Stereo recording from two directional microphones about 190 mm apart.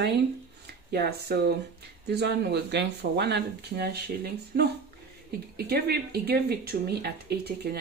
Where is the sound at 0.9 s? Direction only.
55° right (ahead or behind).